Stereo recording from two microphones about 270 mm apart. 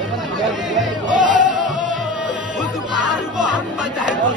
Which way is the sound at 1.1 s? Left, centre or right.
Right.